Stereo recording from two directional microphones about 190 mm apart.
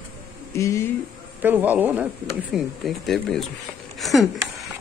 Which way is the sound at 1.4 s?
10° right (ahead or behind).